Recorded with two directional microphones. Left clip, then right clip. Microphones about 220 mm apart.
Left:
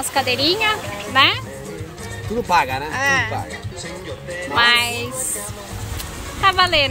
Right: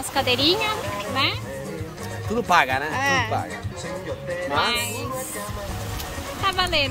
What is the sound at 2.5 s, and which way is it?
Speech, 15° right (ahead or behind).